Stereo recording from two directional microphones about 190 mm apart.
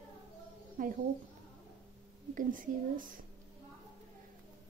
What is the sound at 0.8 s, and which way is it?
Speech, 45° right (ahead or behind).